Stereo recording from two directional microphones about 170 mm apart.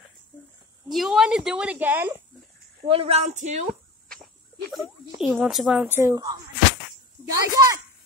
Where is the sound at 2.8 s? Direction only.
35° right (ahead or behind).